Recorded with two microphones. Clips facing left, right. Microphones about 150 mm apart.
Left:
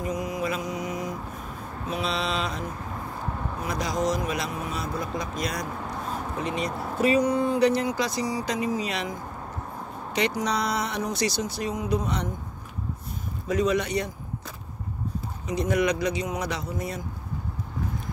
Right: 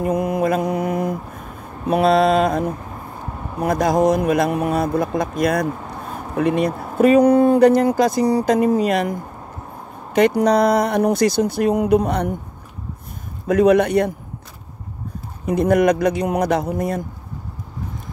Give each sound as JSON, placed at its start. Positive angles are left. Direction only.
{"t": 0.0, "sound": "mantra", "side_deg": -60}
{"t": 1.9, "sound": "speech", "side_deg": -55}
{"t": 13.5, "sound": "speech", "side_deg": -55}
{"t": 15.4, "sound": "speech", "side_deg": -55}